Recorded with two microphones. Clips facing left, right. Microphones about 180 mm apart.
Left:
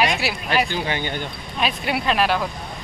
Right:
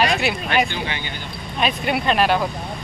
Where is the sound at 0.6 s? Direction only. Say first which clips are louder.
Left 3 dB; 40° left (ahead or behind).